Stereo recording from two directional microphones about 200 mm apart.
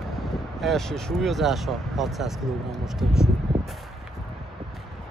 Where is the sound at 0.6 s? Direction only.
Centre (ahead or behind).